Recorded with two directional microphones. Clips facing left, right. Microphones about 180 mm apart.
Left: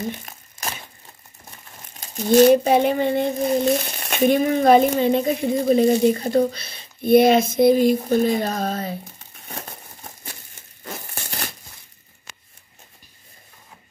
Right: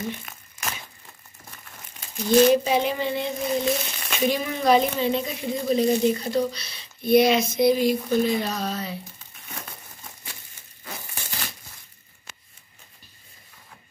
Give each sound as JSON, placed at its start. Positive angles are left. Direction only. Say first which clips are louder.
{"t": 0.2, "sound": "crumpling", "louder": "left 2 dB", "side_deg": 35}
{"t": 2.0, "sound": "speech", "louder": "left 4 dB", "side_deg": 40}
{"t": 4.0, "sound": "speech", "louder": "left 8 dB", "side_deg": 55}
{"t": 9.5, "sound": "crumpling", "louder": "left 4 dB", "side_deg": 30}
{"t": 10.8, "sound": "tearing", "louder": "left 4 dB", "side_deg": 55}